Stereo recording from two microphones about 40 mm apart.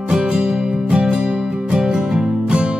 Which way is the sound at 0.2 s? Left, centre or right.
Right.